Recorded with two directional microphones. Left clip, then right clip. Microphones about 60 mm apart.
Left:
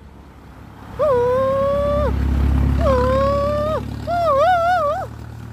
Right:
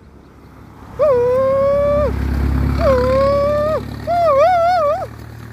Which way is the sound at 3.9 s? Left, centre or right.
Right.